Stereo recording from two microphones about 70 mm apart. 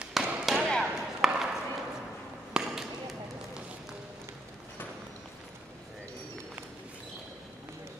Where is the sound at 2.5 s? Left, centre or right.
Centre.